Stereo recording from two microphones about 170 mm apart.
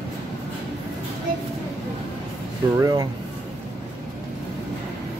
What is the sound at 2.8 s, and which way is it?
Speech, 25° right (ahead or behind).